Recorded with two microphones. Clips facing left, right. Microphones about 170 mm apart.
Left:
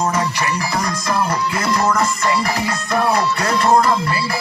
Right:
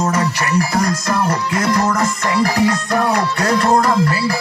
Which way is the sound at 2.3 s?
45° right (ahead or behind).